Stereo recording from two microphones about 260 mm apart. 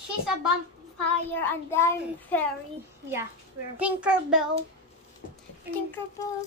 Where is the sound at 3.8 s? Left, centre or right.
Centre.